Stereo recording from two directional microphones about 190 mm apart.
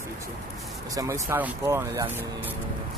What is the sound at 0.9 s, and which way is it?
Speech, 15° right (ahead or behind).